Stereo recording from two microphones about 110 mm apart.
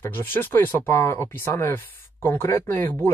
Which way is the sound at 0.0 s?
20° left (ahead or behind).